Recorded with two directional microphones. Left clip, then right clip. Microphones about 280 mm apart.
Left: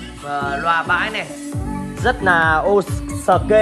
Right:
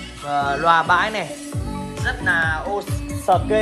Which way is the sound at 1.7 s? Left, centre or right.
Centre.